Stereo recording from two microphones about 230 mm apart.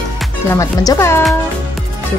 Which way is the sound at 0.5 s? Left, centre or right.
Centre.